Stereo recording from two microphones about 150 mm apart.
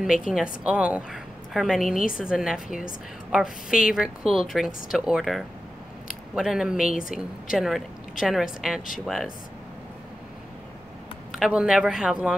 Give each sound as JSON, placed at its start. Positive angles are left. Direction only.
{"t": 0.3, "sound": "a woman's voice", "side_deg": -5}
{"t": 7.0, "sound": "a woman's voice", "side_deg": 65}
{"t": 7.5, "sound": "a woman's voice", "side_deg": 0}
{"t": 11.3, "sound": "a woman's voice", "side_deg": -5}